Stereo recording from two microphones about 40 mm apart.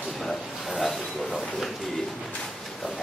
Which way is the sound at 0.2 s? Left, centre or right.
Centre.